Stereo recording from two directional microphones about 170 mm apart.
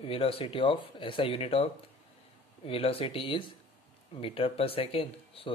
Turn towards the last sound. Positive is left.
turn(degrees=35)  # may be behind; listen again after turning